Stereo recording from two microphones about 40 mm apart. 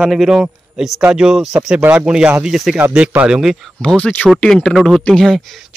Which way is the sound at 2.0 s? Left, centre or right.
Right.